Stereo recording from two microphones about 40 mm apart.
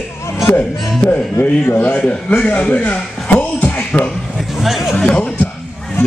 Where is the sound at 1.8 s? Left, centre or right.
Left.